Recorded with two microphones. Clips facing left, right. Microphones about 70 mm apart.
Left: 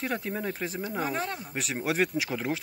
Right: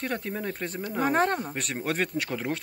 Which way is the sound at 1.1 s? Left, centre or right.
Right.